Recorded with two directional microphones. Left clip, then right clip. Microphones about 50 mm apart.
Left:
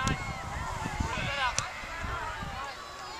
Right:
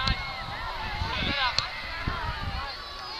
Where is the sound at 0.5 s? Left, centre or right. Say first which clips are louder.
Right 3 dB; right.